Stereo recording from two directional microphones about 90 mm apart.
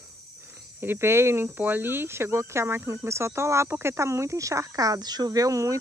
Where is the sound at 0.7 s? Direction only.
25° right (ahead or behind).